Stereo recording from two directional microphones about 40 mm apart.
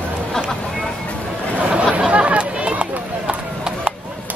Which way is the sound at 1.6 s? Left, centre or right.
Right.